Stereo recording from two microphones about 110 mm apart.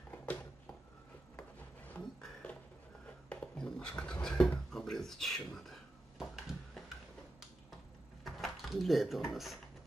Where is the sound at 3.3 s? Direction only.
10° left (ahead or behind).